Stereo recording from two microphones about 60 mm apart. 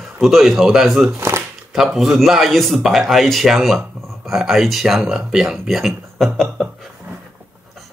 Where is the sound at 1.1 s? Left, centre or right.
Right.